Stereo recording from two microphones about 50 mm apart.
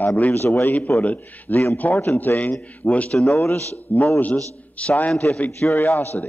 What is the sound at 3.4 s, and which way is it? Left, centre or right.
Speech, left.